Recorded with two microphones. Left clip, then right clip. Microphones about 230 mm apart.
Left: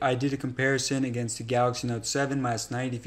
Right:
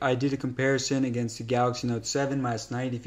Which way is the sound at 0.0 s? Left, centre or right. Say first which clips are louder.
Even; centre.